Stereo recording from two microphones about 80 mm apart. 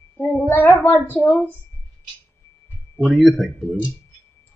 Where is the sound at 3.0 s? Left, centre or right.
Centre.